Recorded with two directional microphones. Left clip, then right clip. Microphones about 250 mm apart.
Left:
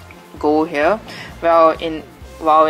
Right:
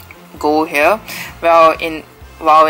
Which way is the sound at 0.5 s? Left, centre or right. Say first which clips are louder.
Right 4 dB; centre.